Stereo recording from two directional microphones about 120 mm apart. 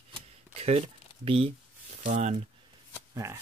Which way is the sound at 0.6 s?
60° right (ahead or behind).